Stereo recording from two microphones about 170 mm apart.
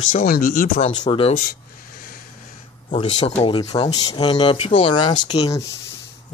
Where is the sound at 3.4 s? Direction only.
30° left (ahead or behind).